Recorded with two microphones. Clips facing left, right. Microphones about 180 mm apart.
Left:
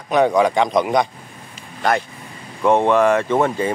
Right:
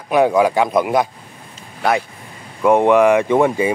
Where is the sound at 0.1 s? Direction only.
5° right (ahead or behind).